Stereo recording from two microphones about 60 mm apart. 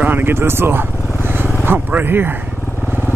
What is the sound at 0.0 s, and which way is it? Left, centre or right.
Vehicle, right.